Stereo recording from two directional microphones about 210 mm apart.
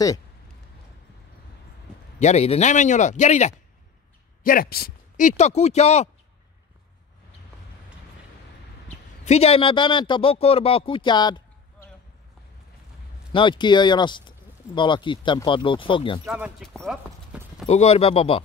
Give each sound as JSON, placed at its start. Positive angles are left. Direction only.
{"t": 2.1, "sound": "speech", "side_deg": 30}
{"t": 8.8, "sound": "a man's voice", "side_deg": 30}
{"t": 13.3, "sound": "a man's voice", "side_deg": 25}
{"t": 16.3, "sound": "speech", "side_deg": -5}
{"t": 17.6, "sound": "a man's voice", "side_deg": 30}